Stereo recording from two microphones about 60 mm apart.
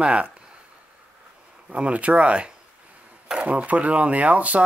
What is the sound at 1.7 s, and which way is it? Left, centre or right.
Speech, right.